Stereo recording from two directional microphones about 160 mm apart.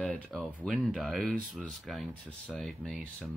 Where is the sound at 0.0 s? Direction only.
5° left (ahead or behind).